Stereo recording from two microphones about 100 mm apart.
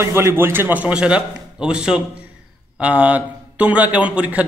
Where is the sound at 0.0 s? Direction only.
25° right (ahead or behind).